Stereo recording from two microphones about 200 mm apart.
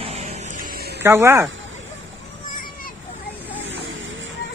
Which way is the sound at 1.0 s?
10° right (ahead or behind).